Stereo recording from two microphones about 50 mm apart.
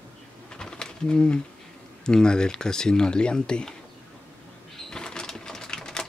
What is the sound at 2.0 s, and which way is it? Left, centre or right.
Speech, centre.